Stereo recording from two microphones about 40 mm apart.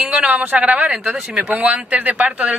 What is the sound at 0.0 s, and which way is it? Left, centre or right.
Speech, right.